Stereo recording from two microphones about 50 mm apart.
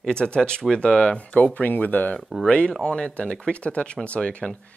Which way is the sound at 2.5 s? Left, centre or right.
Left.